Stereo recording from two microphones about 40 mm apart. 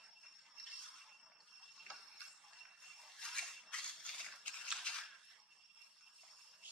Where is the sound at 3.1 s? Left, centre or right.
Centre.